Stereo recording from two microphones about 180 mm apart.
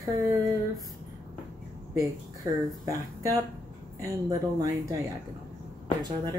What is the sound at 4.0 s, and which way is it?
Speech, 20° right (ahead or behind).